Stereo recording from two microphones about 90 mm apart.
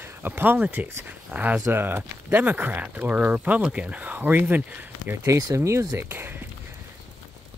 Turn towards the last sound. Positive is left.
turn(degrees=-25)  # may be behind; listen again after turning